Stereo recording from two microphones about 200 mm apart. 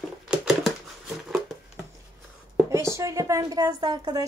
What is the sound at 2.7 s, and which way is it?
A woman's voice, 15° right (ahead or behind).